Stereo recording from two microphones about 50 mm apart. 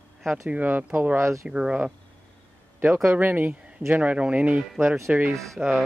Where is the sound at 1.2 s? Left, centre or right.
Right.